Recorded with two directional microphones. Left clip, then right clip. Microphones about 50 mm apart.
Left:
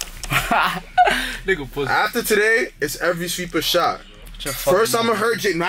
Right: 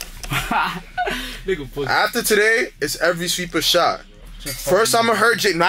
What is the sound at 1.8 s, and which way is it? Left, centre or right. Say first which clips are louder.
Speech: right 3 dB; centre.